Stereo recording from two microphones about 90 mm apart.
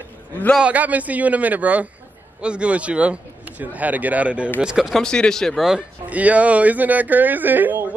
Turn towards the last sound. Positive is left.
turn(degrees=-20)  # may be behind; listen again after turning